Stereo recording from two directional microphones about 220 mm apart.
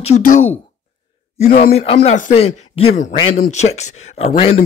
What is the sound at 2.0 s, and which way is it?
Speech, 30° left (ahead or behind).